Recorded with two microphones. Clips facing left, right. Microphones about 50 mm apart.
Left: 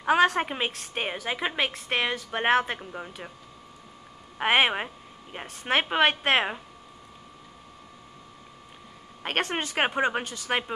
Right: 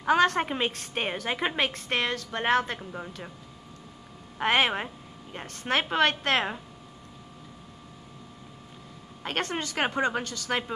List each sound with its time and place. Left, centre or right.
0.0 s a woman's voice: centre
4.4 s a woman's voice: centre
9.2 s speech: left